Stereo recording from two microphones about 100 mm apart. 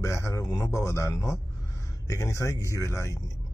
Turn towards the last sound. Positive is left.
turn(degrees=30)  # may be behind; listen again after turning